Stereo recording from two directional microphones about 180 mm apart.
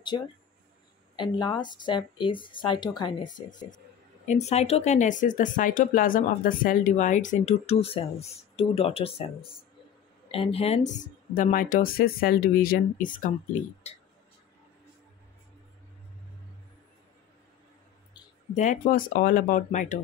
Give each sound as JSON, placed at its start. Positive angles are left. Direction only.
{"t": 0.1, "sound": "speech", "side_deg": 25}
{"t": 3.4, "sound": "speech", "side_deg": 45}
{"t": 18.5, "sound": "speech", "side_deg": 45}